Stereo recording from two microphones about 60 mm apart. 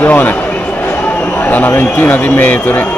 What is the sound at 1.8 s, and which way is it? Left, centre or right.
A man's voice, left.